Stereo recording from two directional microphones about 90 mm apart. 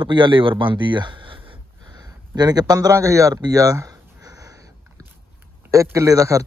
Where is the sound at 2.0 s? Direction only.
50° right (ahead or behind).